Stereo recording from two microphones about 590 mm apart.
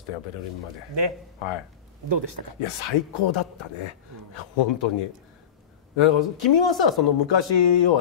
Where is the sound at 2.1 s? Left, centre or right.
Right.